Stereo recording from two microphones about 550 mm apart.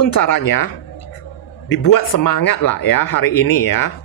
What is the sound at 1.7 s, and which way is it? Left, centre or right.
Speech, left.